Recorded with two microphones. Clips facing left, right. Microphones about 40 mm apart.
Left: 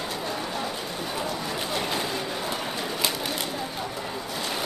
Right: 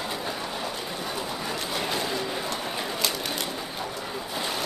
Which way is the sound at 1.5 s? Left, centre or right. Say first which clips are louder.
Right 1 dB; centre.